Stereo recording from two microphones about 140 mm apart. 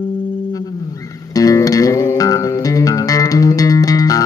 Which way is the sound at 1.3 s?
25° left (ahead or behind).